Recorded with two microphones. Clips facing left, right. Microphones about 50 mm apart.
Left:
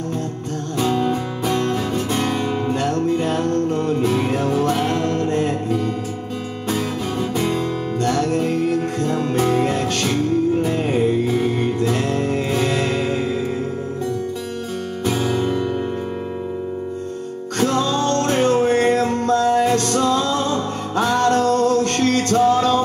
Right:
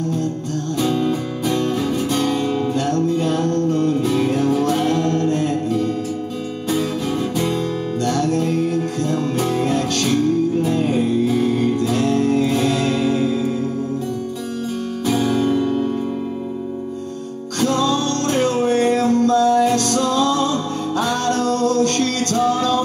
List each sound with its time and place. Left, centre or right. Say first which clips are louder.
0.8 s music: left 1 dB; left
7.4 s music: even; left
15.0 s music: right 2 dB; centre
17.6 s music: right 1 dB; left